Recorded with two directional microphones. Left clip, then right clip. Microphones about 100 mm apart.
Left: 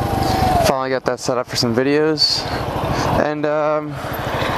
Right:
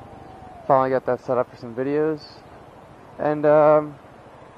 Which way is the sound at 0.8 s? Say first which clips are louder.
Left 1 dB; 10° left (ahead or behind).